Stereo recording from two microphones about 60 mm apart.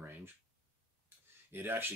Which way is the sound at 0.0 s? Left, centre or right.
Right.